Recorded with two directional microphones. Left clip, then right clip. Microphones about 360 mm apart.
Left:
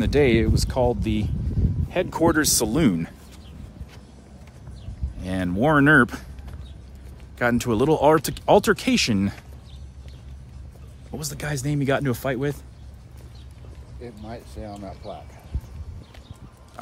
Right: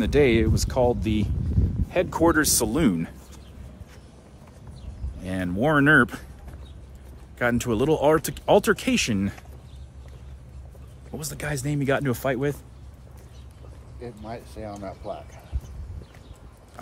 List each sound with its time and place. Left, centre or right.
0.0 s speech: centre
5.2 s speech: centre
7.3 s speech: centre
11.1 s speech: centre
14.0 s speech: right